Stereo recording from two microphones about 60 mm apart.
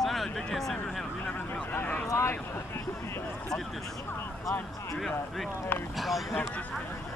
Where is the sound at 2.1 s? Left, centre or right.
Left.